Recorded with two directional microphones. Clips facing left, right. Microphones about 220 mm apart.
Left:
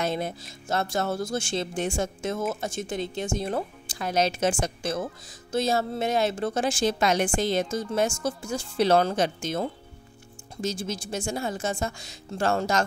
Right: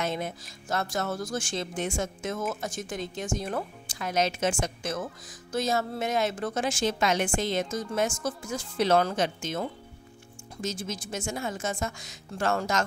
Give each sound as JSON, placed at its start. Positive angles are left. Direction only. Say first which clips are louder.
{"t": 0.0, "sound": "a woman's voice", "louder": "left 3 dB", "side_deg": 35}